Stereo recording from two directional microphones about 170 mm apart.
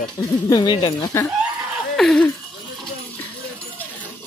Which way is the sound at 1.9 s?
5° left (ahead or behind).